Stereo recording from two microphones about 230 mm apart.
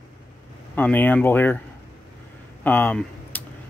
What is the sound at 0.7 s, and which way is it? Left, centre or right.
Speech, centre.